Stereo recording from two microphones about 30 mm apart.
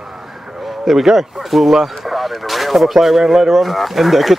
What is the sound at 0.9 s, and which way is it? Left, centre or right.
Speech, centre.